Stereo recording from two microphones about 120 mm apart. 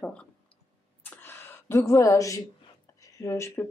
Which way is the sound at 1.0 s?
15° left (ahead or behind).